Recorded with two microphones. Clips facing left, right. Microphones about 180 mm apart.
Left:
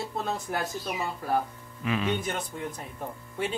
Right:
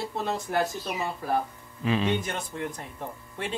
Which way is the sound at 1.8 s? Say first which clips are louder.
Right 3 dB; 30° right (ahead or behind).